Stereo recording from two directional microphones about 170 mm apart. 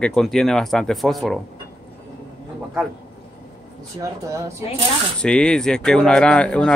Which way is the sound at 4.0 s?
20° right (ahead or behind).